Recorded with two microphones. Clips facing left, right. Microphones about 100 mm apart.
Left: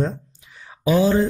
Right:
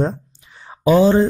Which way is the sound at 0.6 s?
35° right (ahead or behind).